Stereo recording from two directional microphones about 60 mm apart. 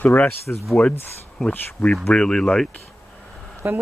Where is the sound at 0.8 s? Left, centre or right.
Left.